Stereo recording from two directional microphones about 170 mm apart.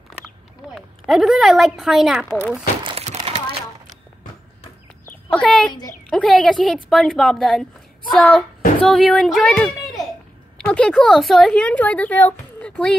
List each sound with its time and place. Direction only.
0.7 s a woman's voice: centre (ahead or behind)
2.8 s a sound: 30° right (ahead or behind)
5.0 s chicken: 5° left (ahead or behind)
6.0 s speech: 5° left (ahead or behind)